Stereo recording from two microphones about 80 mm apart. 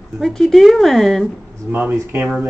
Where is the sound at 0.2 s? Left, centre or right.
Centre.